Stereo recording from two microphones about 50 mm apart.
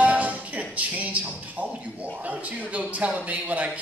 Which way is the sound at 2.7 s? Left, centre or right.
Right.